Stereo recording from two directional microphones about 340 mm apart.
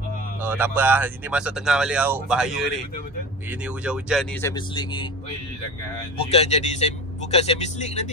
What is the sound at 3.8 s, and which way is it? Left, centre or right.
Speech, centre.